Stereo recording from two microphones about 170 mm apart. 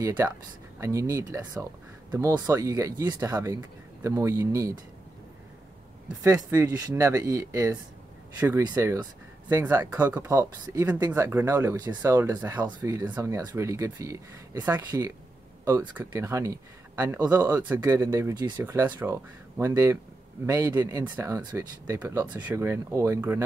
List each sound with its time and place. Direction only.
0.0 s speech: 20° right (ahead or behind)
6.2 s speech: 15° right (ahead or behind)